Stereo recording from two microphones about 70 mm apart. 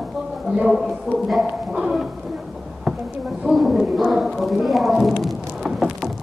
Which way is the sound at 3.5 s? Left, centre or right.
Centre.